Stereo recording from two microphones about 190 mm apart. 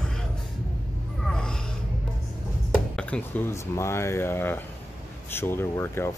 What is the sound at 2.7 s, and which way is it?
Speech, 5° left (ahead or behind).